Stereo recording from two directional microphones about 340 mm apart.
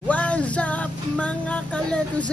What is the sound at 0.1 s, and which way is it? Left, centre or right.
Music, centre.